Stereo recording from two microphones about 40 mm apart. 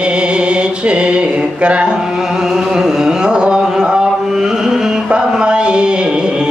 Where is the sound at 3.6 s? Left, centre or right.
Centre.